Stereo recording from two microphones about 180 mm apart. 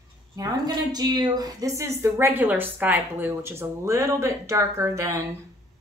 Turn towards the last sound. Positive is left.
turn(degrees=-15)  # may be behind; listen again after turning